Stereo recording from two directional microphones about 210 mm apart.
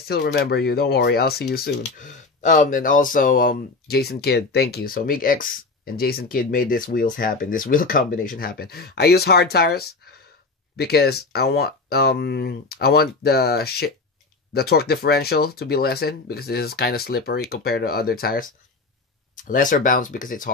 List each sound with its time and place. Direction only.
0.1 s speech: 50° left (ahead or behind)